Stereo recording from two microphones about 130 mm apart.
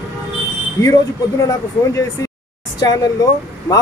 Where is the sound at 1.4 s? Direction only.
25° left (ahead or behind).